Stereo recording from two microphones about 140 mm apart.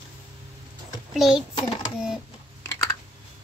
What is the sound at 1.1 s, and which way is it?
Speech, 5° right (ahead or behind).